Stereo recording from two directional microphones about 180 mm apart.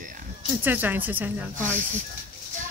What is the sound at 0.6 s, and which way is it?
Speech, 10° right (ahead or behind).